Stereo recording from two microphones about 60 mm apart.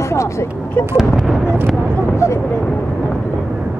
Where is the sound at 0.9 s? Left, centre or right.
Centre.